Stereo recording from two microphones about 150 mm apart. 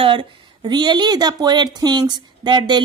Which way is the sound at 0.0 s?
35° right (ahead or behind).